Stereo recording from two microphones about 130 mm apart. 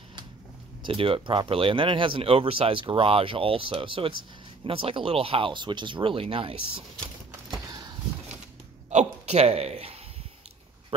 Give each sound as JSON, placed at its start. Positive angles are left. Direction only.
{"t": 0.8, "sound": "speech", "side_deg": -45}
{"t": 8.9, "sound": "speech", "side_deg": -55}